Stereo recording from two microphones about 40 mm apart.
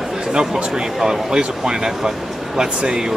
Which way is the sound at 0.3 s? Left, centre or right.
Right.